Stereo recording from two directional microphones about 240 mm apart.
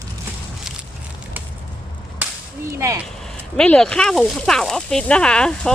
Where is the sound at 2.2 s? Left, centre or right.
Centre.